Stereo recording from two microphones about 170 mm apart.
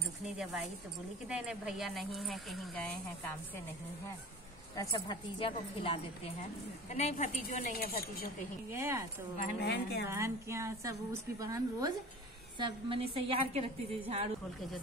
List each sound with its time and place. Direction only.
1.3 s speech: 5° right (ahead or behind)
4.7 s speech: 25° left (ahead or behind)
7.4 s speech: 60° left (ahead or behind)
8.7 s a woman's voice: 15° right (ahead or behind)
9.6 s speech: 70° left (ahead or behind)
10.0 s a woman's voice: 15° right (ahead or behind); by 14.3 s 35° right (ahead or behind)